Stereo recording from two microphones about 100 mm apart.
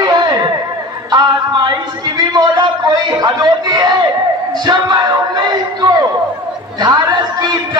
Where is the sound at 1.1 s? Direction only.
45° right (ahead or behind).